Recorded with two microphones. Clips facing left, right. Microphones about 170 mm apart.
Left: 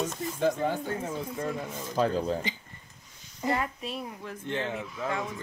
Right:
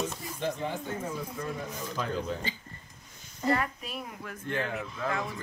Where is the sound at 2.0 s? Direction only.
35° left (ahead or behind).